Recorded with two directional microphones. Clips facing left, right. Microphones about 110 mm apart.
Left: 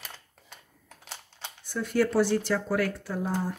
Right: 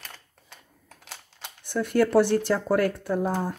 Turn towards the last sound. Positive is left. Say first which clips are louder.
# right 4 dB
turn(degrees=-50)  # may be behind; listen again after turning